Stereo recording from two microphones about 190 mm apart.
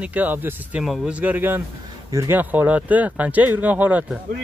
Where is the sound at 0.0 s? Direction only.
10° right (ahead or behind).